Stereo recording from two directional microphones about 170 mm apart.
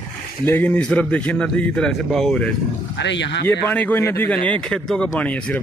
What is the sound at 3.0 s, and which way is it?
Speech, 90° left.